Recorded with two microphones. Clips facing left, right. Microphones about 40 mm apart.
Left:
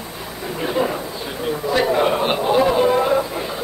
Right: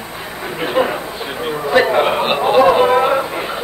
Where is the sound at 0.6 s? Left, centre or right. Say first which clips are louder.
Right 4 dB; right.